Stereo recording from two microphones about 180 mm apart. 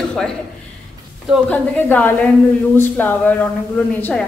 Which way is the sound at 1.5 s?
10° left (ahead or behind).